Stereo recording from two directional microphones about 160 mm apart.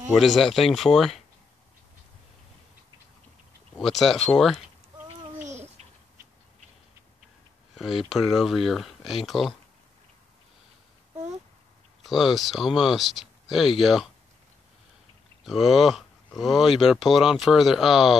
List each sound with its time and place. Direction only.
0.1 s speech: centre (ahead or behind)
3.7 s speech: centre (ahead or behind)
5.4 s a sound: 45° right (ahead or behind)
7.7 s speech: centre (ahead or behind)
12.0 s speech: centre (ahead or behind)
15.4 s speech: centre (ahead or behind)